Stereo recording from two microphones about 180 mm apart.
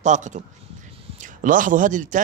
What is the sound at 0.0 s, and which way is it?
A man's voice, 40° right (ahead or behind).